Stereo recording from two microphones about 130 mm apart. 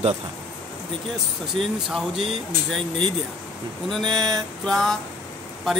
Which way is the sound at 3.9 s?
5° left (ahead or behind).